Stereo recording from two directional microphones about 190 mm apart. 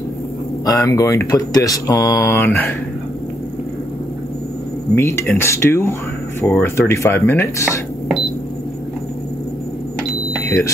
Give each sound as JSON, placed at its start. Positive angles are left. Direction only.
{"t": 0.7, "sound": "speech", "side_deg": 15}
{"t": 4.9, "sound": "speech", "side_deg": 10}
{"t": 10.4, "sound": "smoke detector", "side_deg": 15}